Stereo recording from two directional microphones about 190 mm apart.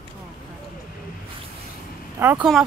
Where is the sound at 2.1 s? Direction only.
10° right (ahead or behind).